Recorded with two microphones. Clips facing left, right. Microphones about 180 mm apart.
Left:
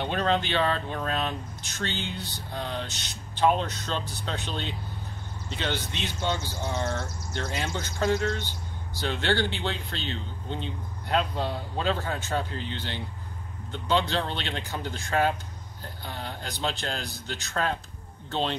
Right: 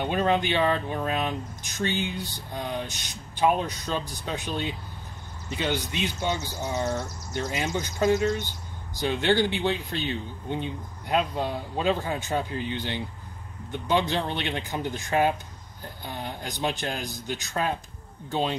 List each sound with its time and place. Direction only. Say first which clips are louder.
0.0 s speech: right 2 dB; 15° right (ahead or behind)